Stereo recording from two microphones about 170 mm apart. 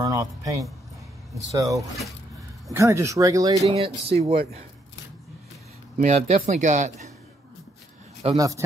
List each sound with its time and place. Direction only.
0.0 s speech: 20° right (ahead or behind)
1.8 s speech: centre (ahead or behind)
2.7 s speech: 15° right (ahead or behind)
3.6 s speech: 35° right (ahead or behind)
5.9 s speech: 45° right (ahead or behind)
8.4 s speech: 20° right (ahead or behind)